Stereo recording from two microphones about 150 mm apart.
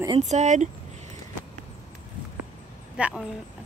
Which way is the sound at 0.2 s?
50° right (ahead or behind).